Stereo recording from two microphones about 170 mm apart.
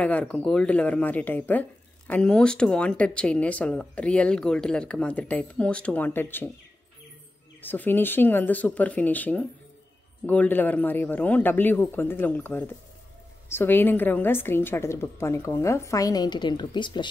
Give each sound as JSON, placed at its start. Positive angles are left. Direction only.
{"t": 0.0, "sound": "speech", "side_deg": 5}
{"t": 7.6, "sound": "speech", "side_deg": 10}